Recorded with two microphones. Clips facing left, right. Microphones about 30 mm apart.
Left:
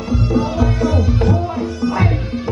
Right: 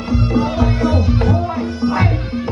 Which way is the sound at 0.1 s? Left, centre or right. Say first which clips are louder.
Right 1 dB; right.